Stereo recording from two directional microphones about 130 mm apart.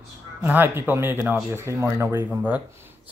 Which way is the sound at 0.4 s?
15° right (ahead or behind).